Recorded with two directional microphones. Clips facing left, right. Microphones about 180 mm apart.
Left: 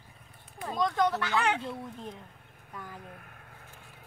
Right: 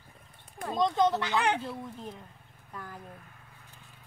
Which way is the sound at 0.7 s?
25° right (ahead or behind).